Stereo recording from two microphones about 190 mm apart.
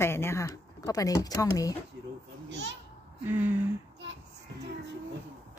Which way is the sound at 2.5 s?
70° right (ahead or behind).